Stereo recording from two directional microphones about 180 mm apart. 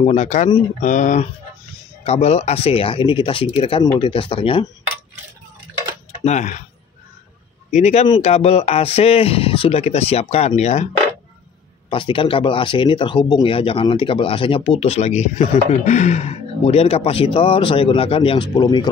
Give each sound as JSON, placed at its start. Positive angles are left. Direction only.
{"t": 0.0, "sound": "speech", "side_deg": 40}
{"t": 6.1, "sound": "speech", "side_deg": 40}
{"t": 7.7, "sound": "speech", "side_deg": 35}
{"t": 11.9, "sound": "speech", "side_deg": 30}